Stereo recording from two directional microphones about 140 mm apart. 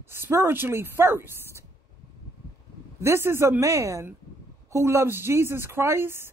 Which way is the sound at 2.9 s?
20° right (ahead or behind).